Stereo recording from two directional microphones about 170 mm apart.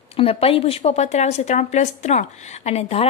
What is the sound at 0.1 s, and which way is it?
A woman's voice, 35° left (ahead or behind).